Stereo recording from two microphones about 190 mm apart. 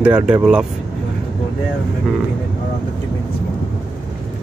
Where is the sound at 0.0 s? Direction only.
5° right (ahead or behind).